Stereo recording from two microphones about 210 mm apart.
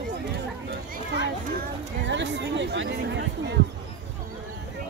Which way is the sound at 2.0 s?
55° right (ahead or behind).